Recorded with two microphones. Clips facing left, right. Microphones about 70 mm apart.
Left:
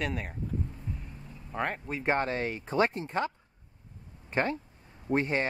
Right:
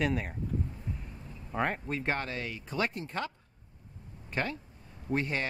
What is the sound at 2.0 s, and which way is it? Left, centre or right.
Speech, left.